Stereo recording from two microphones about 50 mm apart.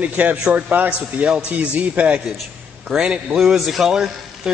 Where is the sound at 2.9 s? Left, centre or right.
Centre.